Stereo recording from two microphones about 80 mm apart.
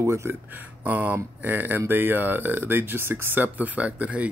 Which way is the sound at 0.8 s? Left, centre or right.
Right.